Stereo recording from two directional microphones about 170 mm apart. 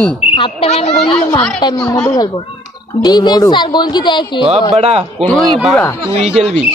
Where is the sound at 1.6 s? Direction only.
25° left (ahead or behind).